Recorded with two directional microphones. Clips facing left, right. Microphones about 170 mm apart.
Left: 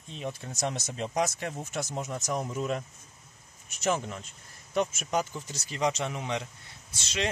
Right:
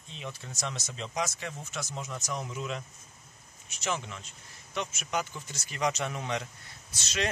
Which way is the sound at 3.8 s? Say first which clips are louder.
Left 5 dB; 45° left (ahead or behind).